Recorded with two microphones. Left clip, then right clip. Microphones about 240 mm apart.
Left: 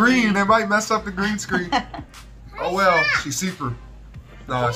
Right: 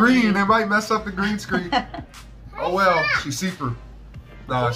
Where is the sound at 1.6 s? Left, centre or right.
Left.